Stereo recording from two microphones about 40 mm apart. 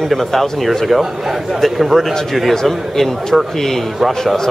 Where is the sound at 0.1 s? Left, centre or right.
Centre.